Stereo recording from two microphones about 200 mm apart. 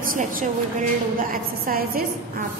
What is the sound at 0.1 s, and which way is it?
A woman's voice, 45° right (ahead or behind).